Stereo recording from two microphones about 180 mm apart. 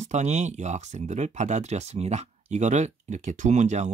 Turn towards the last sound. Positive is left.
turn(degrees=-40)  # may be behind; listen again after turning